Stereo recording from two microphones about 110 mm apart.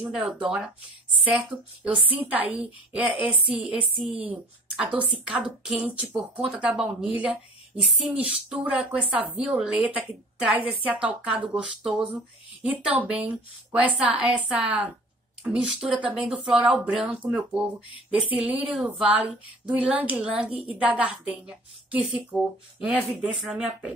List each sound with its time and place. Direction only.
0.4 s speech: 10° right (ahead or behind)
2.0 s a woman's voice: 55° right (ahead or behind)
2.2 s speech: 15° right (ahead or behind)